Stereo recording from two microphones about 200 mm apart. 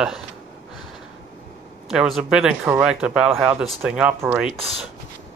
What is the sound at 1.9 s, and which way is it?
Speech, centre (ahead or behind).